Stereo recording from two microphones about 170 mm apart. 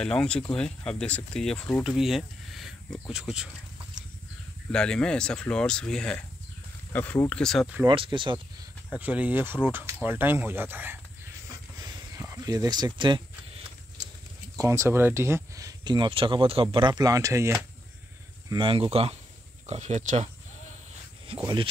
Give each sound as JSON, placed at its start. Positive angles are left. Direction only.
{"t": 0.0, "sound": "speech", "side_deg": 5}
{"t": 4.7, "sound": "speech", "side_deg": 5}
{"t": 7.9, "sound": "speech", "side_deg": -30}
{"t": 8.9, "sound": "speech", "side_deg": -10}
{"t": 11.8, "sound": "a sound", "side_deg": -20}
{"t": 14.6, "sound": "speech", "side_deg": -15}
{"t": 18.5, "sound": "speech", "side_deg": -30}
{"t": 21.3, "sound": "speech", "side_deg": -35}